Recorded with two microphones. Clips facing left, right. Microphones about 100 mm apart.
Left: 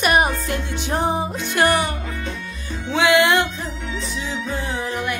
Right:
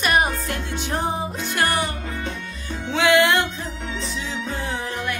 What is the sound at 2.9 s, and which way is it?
Music, 10° left (ahead or behind).